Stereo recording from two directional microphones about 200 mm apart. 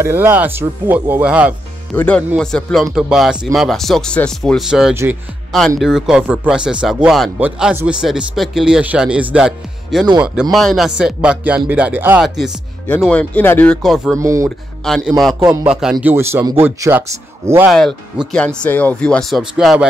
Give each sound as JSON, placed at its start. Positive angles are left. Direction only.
{"t": 0.0, "sound": "speech", "side_deg": -10}
{"t": 2.0, "sound": "speech", "side_deg": 5}
{"t": 14.1, "sound": "speech", "side_deg": -15}
{"t": 15.0, "sound": "speech", "side_deg": 0}
{"t": 17.6, "sound": "speech", "side_deg": 0}